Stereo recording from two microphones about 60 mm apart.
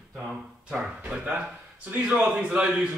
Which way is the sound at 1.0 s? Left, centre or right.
Right.